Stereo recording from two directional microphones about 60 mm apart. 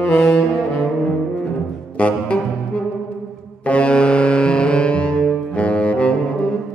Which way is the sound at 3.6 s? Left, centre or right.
Centre.